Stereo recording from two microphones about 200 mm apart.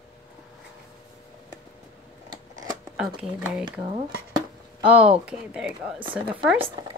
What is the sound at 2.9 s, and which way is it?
Speech, 5° right (ahead or behind).